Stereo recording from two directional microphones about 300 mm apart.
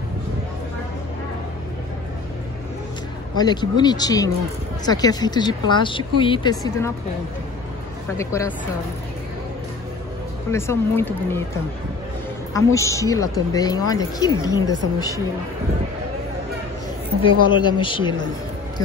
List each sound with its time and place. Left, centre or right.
3.3 s speech: centre
8.2 s speech: centre
10.5 s speech: centre
12.5 s speech: centre
17.5 s speech: centre